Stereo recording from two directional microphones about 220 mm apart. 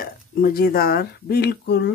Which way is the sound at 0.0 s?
40° left (ahead or behind).